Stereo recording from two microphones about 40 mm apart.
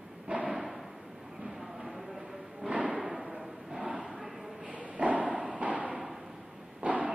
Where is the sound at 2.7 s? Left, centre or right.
Right.